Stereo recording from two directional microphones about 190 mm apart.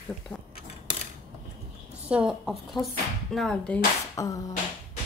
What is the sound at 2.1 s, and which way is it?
Speech, 5° right (ahead or behind).